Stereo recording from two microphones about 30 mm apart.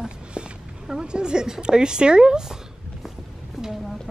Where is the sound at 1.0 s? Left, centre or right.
Right.